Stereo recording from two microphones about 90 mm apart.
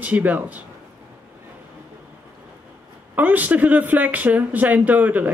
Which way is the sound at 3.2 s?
20° right (ahead or behind).